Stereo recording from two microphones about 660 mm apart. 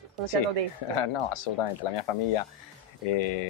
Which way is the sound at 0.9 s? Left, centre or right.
Left.